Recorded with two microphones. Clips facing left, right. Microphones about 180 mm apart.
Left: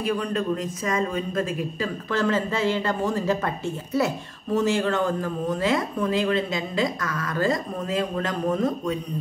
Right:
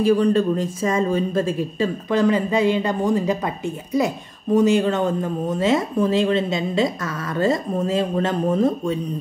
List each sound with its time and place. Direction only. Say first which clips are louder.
0.0 s speech: right 9 dB; 30° right (ahead or behind)
2.0 s speech: right 5 dB; 15° right (ahead or behind)